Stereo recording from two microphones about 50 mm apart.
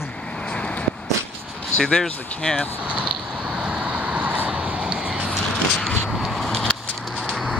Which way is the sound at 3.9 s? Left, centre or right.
Right.